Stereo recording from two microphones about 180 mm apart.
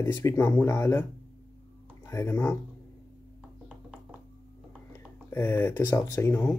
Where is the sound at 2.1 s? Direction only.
15° left (ahead or behind).